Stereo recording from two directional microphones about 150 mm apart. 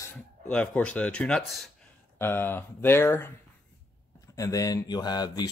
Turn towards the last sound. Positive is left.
turn(degrees=25)  # may be behind; listen again after turning